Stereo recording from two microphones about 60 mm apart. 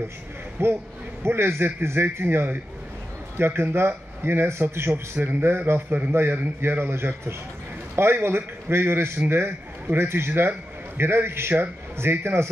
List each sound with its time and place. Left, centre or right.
0.6 s a man's voice: right